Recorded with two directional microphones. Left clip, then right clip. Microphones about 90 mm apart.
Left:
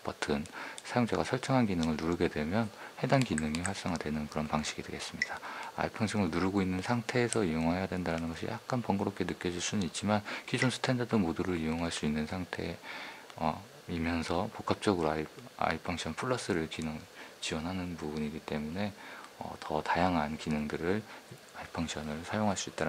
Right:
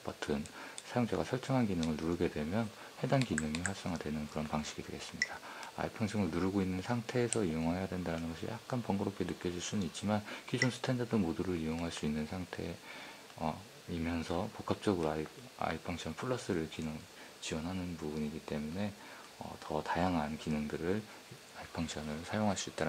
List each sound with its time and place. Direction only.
0.0 s speech: 35° left (ahead or behind)